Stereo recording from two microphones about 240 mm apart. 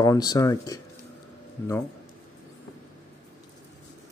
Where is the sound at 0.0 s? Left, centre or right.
Centre.